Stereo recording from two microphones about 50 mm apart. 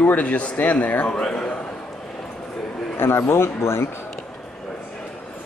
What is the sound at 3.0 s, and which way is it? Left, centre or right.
Speech, left.